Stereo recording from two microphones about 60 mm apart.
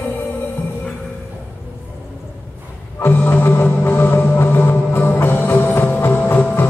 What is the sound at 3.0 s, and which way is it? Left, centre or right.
Music, left.